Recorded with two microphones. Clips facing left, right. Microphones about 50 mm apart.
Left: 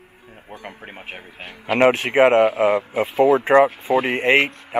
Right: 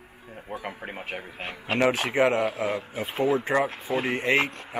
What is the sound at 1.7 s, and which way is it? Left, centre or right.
Speech, left.